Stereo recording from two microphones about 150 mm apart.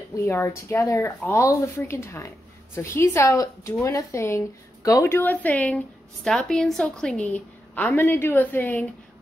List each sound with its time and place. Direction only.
0.1 s speech: 15° left (ahead or behind)